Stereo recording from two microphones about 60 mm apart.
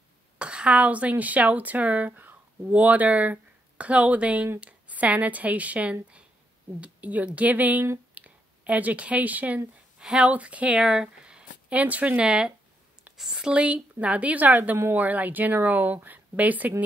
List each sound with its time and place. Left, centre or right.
0.4 s a woman's voice: centre
8.1 s a sound: right
9.9 s speech: centre
10.8 s speech: centre
11.7 s speech: right